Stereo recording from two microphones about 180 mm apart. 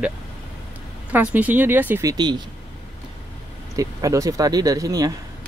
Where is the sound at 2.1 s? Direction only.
25° right (ahead or behind).